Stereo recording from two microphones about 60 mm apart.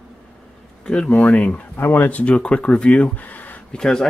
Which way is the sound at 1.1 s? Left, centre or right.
Left.